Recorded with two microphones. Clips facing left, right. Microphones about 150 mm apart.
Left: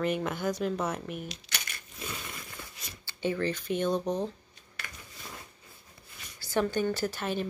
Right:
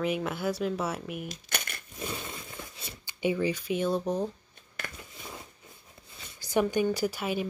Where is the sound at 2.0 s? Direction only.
20° right (ahead or behind).